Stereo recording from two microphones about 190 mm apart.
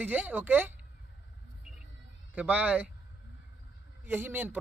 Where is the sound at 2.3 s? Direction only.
5° right (ahead or behind).